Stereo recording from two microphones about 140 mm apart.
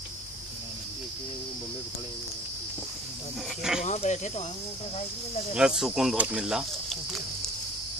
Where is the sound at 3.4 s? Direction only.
5° right (ahead or behind).